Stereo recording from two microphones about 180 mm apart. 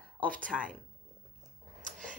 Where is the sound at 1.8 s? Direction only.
45° right (ahead or behind).